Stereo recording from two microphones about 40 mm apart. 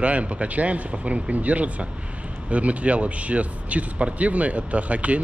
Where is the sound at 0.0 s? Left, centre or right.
Right.